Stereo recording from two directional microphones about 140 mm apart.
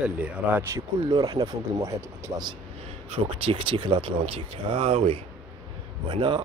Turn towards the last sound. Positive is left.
turn(degrees=-35)  # may be behind; listen again after turning